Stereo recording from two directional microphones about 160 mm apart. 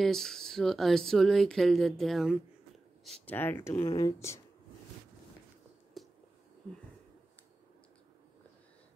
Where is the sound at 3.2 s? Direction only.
10° left (ahead or behind).